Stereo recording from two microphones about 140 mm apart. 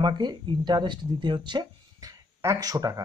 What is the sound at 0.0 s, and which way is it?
Speech, 30° right (ahead or behind).